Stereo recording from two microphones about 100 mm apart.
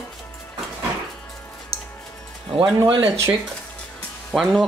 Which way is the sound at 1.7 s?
80° right.